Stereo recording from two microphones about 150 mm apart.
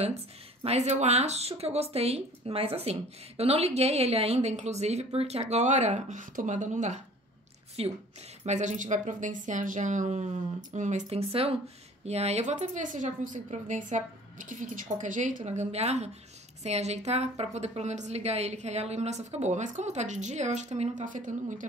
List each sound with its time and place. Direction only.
0.0 s speech: 45° right (ahead or behind)
7.8 s a woman's voice: 40° right (ahead or behind)
8.5 s speech: 55° right (ahead or behind)